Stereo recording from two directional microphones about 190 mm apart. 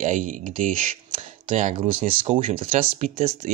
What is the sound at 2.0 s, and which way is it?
Speech, 30° right (ahead or behind).